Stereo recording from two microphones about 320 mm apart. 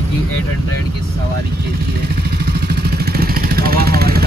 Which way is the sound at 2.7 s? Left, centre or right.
Right.